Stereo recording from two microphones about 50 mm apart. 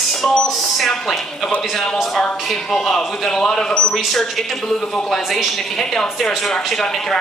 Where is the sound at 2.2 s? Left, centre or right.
Centre.